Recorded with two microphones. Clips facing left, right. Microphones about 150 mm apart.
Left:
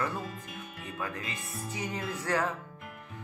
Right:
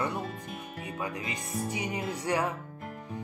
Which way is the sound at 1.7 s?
15° right (ahead or behind).